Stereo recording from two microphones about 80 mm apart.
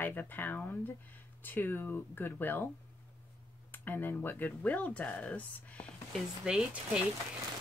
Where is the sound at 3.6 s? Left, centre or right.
Left.